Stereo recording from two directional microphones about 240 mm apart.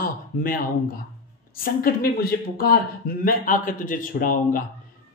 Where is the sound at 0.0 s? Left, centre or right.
Left.